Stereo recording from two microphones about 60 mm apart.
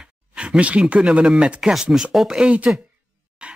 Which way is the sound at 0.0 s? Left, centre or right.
Centre.